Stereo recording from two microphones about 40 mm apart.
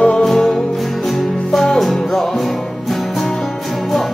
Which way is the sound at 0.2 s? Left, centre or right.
Centre.